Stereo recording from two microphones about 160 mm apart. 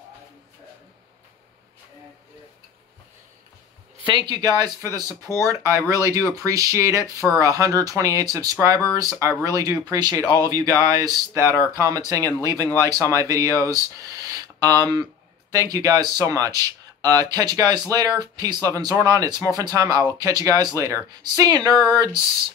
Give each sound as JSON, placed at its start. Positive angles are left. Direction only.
{"t": 4.0, "sound": "speech", "side_deg": -30}
{"t": 11.4, "sound": "speech", "side_deg": 20}
{"t": 11.8, "sound": "speech", "side_deg": -20}